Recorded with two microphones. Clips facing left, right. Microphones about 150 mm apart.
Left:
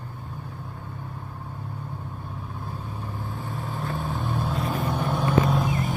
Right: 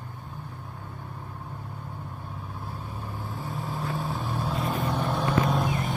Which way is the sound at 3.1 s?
Centre (ahead or behind).